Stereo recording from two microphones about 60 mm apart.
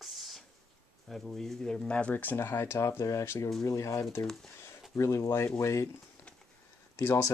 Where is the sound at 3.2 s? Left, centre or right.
Left.